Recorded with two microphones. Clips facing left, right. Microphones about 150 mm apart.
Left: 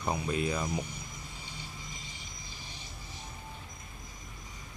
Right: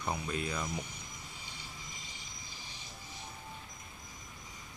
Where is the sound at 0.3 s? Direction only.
20° left (ahead or behind).